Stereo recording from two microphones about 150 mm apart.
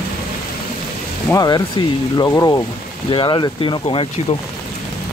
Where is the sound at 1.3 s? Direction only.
25° left (ahead or behind).